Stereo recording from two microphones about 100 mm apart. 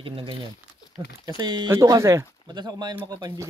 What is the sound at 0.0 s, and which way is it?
Speech, 60° right (ahead or behind).